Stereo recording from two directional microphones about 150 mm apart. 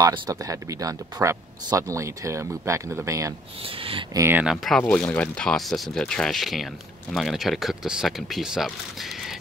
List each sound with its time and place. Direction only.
0.0 s speech: 25° right (ahead or behind)
3.6 s speech: 35° right (ahead or behind)
4.1 s speech: 15° right (ahead or behind)
4.6 s speech: 5° left (ahead or behind)